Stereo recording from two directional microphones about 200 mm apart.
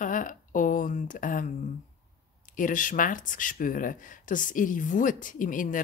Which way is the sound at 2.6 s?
40° left (ahead or behind).